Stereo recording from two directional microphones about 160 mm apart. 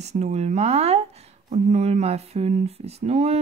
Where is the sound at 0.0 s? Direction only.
45° right (ahead or behind).